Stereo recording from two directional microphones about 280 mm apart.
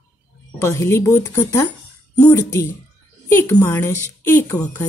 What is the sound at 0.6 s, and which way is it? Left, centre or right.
Speech, centre.